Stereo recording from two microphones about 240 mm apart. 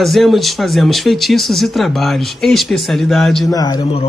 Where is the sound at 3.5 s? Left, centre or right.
Centre.